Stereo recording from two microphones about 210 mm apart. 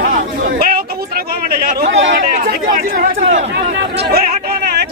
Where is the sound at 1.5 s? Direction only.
45° right (ahead or behind).